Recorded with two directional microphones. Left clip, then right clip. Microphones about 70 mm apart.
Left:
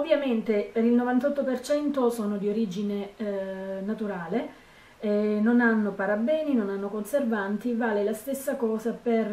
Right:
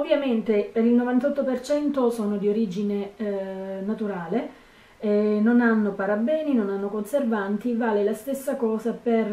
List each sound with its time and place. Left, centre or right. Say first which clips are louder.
0.0 s a woman's voice: right 2 dB; centre